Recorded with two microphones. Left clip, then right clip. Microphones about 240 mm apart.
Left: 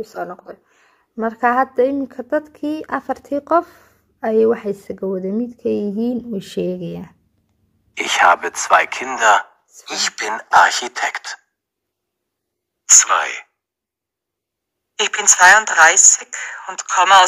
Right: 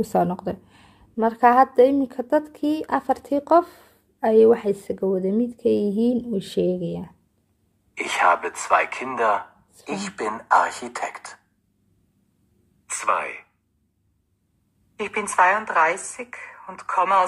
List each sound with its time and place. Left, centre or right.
0.1 s a woman's voice: centre
7.9 s a woman's voice: left
12.8 s a woman's voice: left
15.0 s a woman's voice: left